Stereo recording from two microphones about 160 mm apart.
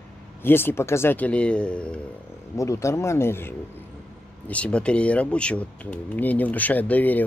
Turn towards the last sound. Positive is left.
turn(degrees=10)  # may be behind; listen again after turning